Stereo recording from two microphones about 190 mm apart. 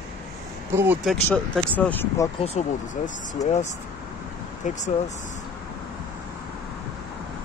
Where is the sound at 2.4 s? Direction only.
35° left (ahead or behind).